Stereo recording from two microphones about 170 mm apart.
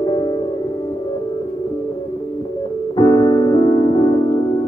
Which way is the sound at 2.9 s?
25° left (ahead or behind).